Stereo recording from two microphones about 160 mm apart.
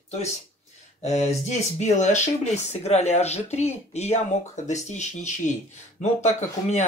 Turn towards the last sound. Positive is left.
turn(degrees=45)  # may be behind; listen again after turning